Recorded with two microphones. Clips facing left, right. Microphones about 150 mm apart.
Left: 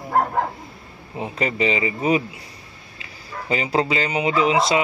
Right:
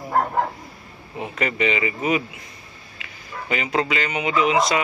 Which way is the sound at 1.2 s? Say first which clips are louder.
Left 1 dB; 30° left (ahead or behind).